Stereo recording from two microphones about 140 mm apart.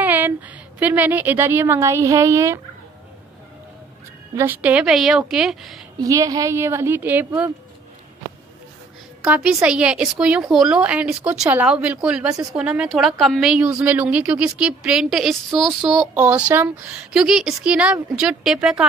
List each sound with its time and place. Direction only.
0.0 s a woman's voice: 10° right (ahead or behind)
4.4 s speech: 10° right (ahead or behind)
5.9 s a woman's voice: 25° right (ahead or behind)
9.2 s a woman's voice: 5° right (ahead or behind)